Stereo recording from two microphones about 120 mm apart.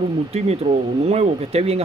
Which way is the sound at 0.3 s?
65° right (ahead or behind).